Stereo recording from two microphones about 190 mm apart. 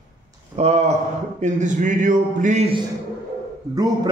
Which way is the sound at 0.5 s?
35° right (ahead or behind).